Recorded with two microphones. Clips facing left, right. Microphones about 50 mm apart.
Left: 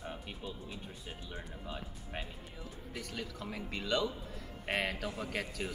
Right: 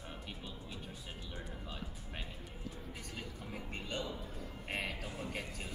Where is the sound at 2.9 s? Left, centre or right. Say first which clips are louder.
Left 4 dB; left.